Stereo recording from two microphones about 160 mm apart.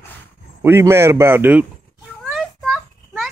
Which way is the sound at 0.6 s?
15° right (ahead or behind).